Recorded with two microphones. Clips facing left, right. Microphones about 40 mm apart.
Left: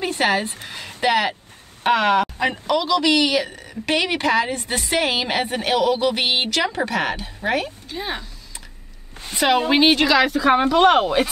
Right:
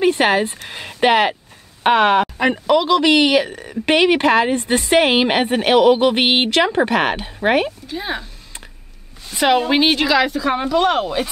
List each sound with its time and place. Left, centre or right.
0.0 s a woman's voice: right
7.9 s a woman's voice: centre
9.4 s a woman's voice: centre
10.4 s speech: centre